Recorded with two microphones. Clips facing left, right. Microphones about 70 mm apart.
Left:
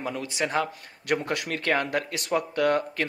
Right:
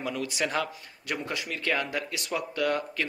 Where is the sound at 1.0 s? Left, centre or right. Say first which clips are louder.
Left 6 dB; left.